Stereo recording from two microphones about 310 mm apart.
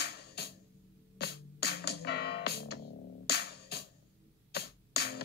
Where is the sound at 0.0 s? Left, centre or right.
Left.